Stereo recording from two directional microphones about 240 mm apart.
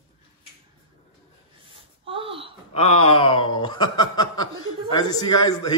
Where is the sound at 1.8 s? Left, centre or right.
Right.